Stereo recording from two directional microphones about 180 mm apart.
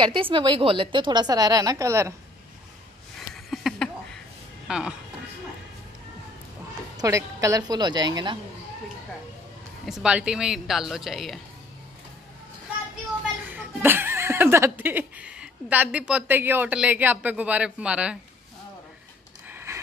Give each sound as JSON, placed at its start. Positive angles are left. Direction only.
{"t": 0.0, "sound": "a woman's voice", "side_deg": -30}
{"t": 3.2, "sound": "a sound", "side_deg": 0}
{"t": 4.6, "sound": "speech", "side_deg": -5}
{"t": 7.0, "sound": "a woman's voice", "side_deg": -15}
{"t": 9.8, "sound": "a woman's voice", "side_deg": -5}
{"t": 13.5, "sound": "speech", "side_deg": -10}
{"t": 19.5, "sound": "a sound", "side_deg": -15}